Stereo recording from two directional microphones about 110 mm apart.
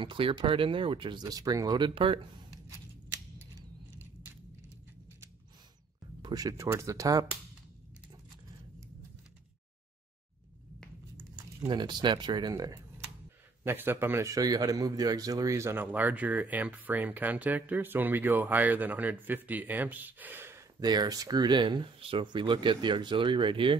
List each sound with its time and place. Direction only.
0.0 s speech: 50° right (ahead or behind)
2.0 s speech: 50° right (ahead or behind)
6.2 s speech: 35° right (ahead or behind)
11.6 s speech: 45° right (ahead or behind)
13.7 s a man's voice: 20° right (ahead or behind)
20.8 s speech: 40° right (ahead or behind)